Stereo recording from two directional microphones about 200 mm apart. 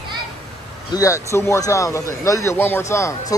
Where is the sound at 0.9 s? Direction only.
15° left (ahead or behind).